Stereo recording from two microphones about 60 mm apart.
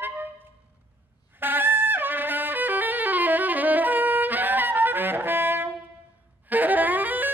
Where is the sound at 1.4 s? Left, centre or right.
Right.